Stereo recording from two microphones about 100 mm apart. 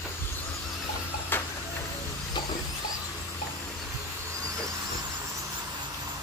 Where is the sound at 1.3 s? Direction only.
20° left (ahead or behind).